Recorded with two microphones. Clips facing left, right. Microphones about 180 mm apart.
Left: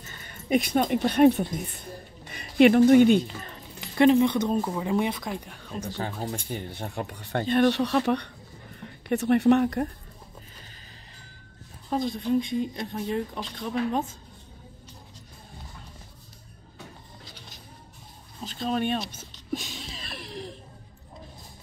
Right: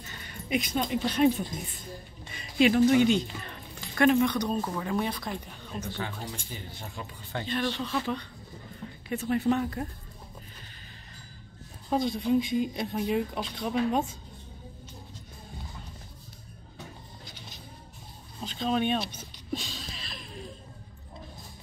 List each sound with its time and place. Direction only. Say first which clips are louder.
0.0 s speech: right 1 dB; 45° left (ahead or behind)
3.8 s speech: left 4 dB; 20° left (ahead or behind)
4.6 s speech: left 4 dB; 15° left (ahead or behind)
5.4 s speech: left 2 dB; 5° left (ahead or behind)
5.9 s speech: left 5 dB; 40° left (ahead or behind)
6.3 s speech: left 7 dB; 60° left (ahead or behind)
11.9 s speech: even; centre (ahead or behind)
18.4 s speech: even; 5° left (ahead or behind)
19.5 s music: left 2 dB; 15° left (ahead or behind)
20.1 s a sound: left 5 dB; 75° left (ahead or behind)